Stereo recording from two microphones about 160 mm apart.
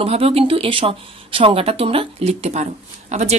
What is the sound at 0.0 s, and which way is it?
Speech, 35° right (ahead or behind).